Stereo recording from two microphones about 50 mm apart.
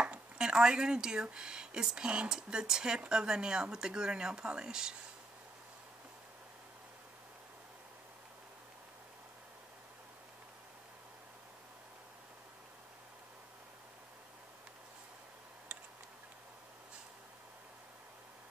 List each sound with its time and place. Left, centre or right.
0.0 s speech: centre